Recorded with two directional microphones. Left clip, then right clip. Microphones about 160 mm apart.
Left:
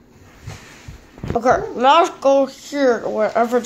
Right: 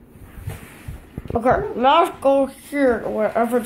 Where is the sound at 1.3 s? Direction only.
10° left (ahead or behind).